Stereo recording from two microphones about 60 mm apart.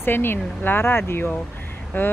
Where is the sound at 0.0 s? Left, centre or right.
Left.